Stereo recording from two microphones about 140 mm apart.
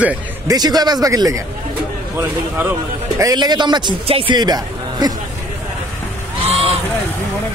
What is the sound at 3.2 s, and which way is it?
A man's voice, 25° right (ahead or behind).